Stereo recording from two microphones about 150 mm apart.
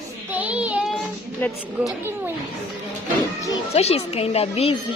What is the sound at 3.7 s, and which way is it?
Speech, 45° left (ahead or behind).